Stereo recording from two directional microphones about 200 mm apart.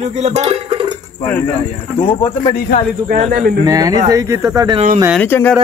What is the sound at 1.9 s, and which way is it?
Speech, 25° left (ahead or behind).